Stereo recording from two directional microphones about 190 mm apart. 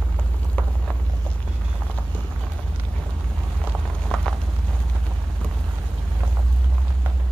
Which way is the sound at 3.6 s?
Centre (ahead or behind).